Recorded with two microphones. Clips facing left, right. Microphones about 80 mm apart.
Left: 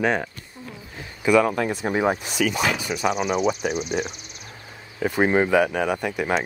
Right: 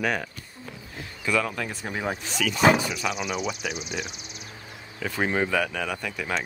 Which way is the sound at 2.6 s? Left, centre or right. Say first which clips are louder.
Right 5 dB; right.